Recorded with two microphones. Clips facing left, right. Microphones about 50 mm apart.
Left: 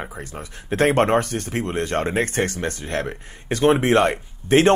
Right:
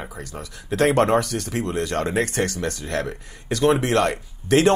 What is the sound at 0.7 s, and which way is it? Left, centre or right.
Speech, left.